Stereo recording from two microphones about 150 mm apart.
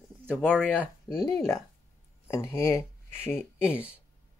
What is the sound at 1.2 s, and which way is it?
Speech, 20° left (ahead or behind).